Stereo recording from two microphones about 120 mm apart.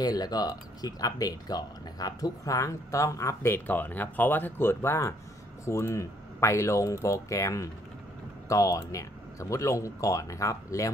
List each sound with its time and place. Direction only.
0.0 s speech: 35° left (ahead or behind)